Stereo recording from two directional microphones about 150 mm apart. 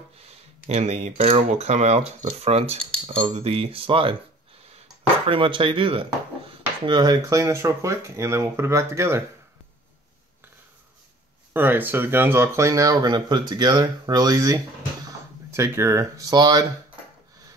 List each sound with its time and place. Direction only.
0.7 s speech: 45° right (ahead or behind)
5.3 s speech: 35° right (ahead or behind); by 9.2 s 20° right (ahead or behind)
11.5 s speech: 15° right (ahead or behind)